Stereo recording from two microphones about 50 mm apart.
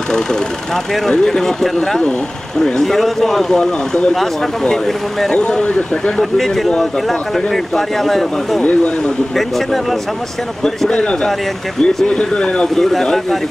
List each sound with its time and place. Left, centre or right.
1.1 s speech: centre
4.1 s speech: centre
5.3 s speech: left
6.3 s speech: centre
10.6 s speech: centre